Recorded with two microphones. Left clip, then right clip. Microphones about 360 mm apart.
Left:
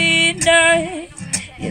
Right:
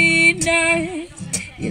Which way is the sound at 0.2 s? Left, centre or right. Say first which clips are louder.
Left 2 dB; left.